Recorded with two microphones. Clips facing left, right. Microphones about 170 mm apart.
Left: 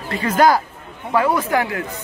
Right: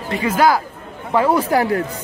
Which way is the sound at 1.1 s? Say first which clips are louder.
Right 2 dB; 30° right (ahead or behind).